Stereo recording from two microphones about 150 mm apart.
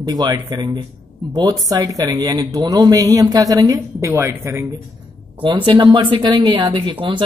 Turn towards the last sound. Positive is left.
turn(degrees=-30)  # may be behind; listen again after turning